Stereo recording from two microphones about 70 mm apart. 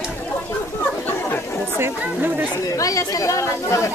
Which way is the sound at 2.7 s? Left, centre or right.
Left.